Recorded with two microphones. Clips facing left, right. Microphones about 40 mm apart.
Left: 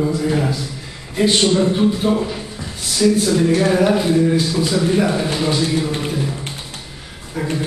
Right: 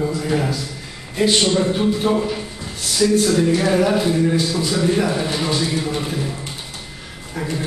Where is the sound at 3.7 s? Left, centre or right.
Centre.